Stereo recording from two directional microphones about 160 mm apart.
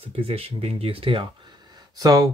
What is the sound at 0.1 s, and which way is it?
Speech, 40° right (ahead or behind).